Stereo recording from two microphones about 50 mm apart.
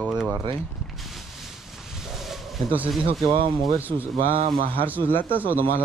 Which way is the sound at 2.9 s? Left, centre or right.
Centre.